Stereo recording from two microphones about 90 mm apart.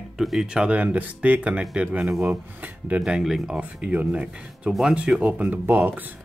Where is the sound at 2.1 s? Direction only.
25° right (ahead or behind).